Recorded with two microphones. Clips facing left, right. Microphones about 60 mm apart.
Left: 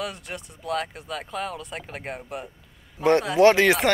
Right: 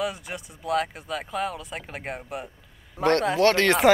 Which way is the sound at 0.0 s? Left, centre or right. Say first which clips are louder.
Right 3 dB; centre.